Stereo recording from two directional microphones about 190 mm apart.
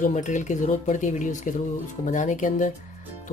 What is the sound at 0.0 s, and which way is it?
Speech, 40° left (ahead or behind).